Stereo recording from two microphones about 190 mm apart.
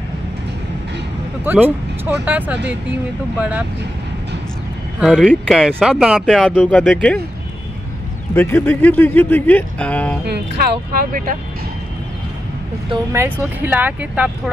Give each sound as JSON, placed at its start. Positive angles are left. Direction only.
{"t": 1.4, "sound": "speech", "side_deg": -10}
{"t": 5.0, "sound": "speech", "side_deg": 0}
{"t": 8.4, "sound": "speech", "side_deg": 10}
{"t": 12.9, "sound": "speech", "side_deg": -15}